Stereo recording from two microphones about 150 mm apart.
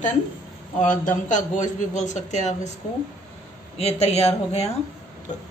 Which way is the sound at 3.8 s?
45° left (ahead or behind).